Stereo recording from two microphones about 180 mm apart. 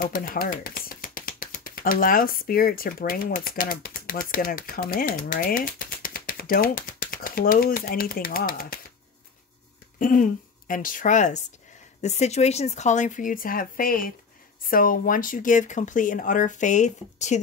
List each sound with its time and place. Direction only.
0.0 s speech: 50° left (ahead or behind)
9.9 s speech: 50° left (ahead or behind)